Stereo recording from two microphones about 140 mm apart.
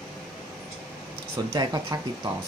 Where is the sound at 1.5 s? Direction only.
25° right (ahead or behind).